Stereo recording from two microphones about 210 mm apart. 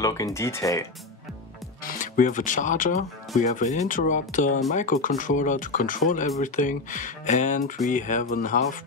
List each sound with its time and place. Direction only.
0.0 s speech: 15° left (ahead or behind)
1.8 s speech: 40° left (ahead or behind)